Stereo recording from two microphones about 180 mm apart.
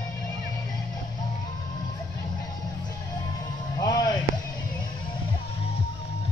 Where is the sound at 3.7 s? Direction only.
20° left (ahead or behind).